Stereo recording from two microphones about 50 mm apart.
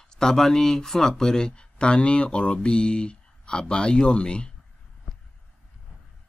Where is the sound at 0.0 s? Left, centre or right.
Centre.